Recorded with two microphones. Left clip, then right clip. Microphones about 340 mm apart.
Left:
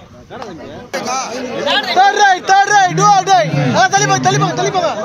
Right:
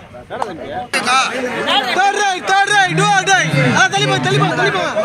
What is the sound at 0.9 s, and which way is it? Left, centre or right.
Speech, centre.